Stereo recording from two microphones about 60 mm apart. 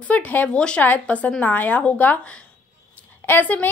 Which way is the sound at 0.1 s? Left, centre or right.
Left.